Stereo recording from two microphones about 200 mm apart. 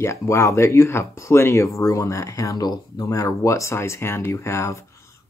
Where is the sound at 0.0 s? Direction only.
15° left (ahead or behind).